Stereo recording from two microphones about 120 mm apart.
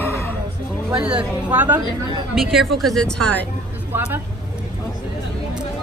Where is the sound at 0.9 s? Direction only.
10° right (ahead or behind).